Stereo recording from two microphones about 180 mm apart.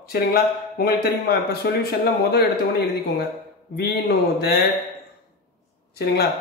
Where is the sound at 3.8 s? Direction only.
60° left (ahead or behind).